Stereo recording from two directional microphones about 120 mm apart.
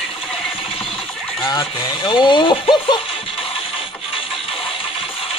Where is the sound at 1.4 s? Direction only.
30° left (ahead or behind).